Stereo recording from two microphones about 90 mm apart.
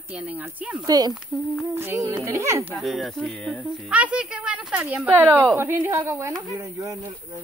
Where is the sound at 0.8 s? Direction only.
45° right (ahead or behind).